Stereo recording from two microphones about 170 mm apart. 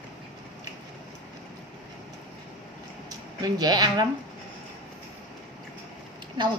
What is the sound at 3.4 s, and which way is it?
Speech, 25° right (ahead or behind).